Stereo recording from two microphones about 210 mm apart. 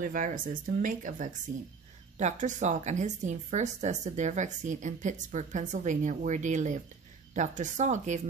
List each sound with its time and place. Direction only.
0.0 s a woman's voice: 40° right (ahead or behind)